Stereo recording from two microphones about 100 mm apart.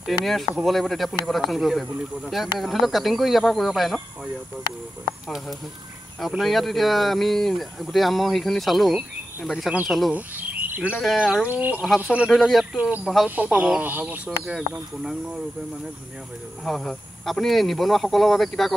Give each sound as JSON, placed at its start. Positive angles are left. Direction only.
{"t": 0.0, "sound": "speech", "side_deg": 0}
{"t": 6.2, "sound": "speech", "side_deg": 0}
{"t": 10.1, "sound": "cricket", "side_deg": -15}
{"t": 11.4, "sound": "speech", "side_deg": -15}
{"t": 12.4, "sound": "speech", "side_deg": 0}
{"t": 12.7, "sound": "speech", "side_deg": -10}
{"t": 13.0, "sound": "speech", "side_deg": 0}
{"t": 13.4, "sound": "speech", "side_deg": -15}
{"t": 16.6, "sound": "speech", "side_deg": 5}